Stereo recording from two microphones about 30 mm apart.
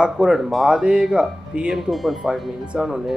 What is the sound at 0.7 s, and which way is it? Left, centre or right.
Speech, right.